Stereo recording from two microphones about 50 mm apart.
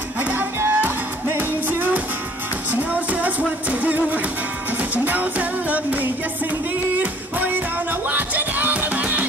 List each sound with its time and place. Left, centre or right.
0.2 s music: right
0.6 s music: right
2.7 s music: right